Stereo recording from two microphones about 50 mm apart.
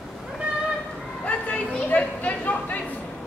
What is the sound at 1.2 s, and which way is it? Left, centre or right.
Children playing, left.